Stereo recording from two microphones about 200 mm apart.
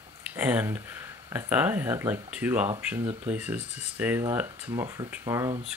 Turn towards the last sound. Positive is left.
turn(degrees=-15)  # may be behind; listen again after turning